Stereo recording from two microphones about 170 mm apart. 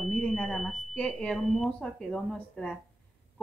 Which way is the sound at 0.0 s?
Centre (ahead or behind).